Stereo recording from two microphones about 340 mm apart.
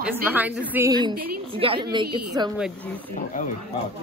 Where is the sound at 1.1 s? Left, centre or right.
Right.